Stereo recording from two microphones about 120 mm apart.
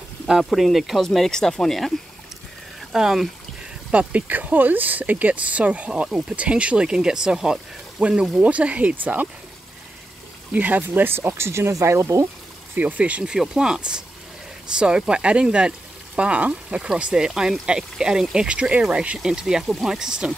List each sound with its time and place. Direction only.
0.3 s speech: centre (ahead or behind)
10.5 s speech: 15° right (ahead or behind)
12.7 s speech: 15° right (ahead or behind)